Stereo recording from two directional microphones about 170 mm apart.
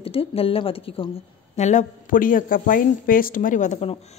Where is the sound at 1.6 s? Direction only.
45° left (ahead or behind).